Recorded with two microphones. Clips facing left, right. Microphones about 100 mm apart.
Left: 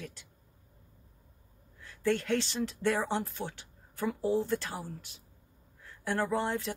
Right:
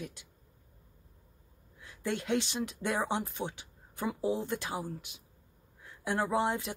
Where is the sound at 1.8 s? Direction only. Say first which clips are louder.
Left 5 dB; 15° right (ahead or behind).